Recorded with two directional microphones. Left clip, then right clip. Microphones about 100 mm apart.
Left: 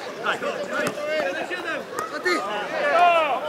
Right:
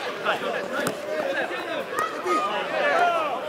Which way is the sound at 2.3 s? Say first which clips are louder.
Right 1 dB; 10° right (ahead or behind).